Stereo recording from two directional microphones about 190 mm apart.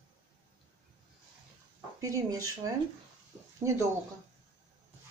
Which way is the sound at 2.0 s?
15° right (ahead or behind).